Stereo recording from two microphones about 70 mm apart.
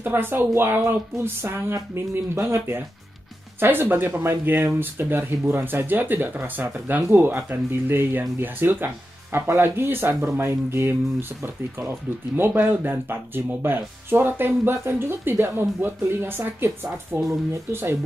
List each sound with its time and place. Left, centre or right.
0.0 s speech: right